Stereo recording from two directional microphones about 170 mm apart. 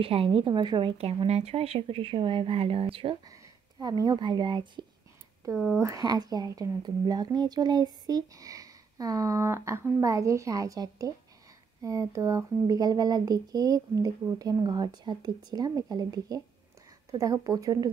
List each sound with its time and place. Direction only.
0.0 s a woman's voice: 35° right (ahead or behind)